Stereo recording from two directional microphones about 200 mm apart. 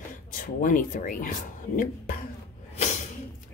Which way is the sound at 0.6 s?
45° left (ahead or behind).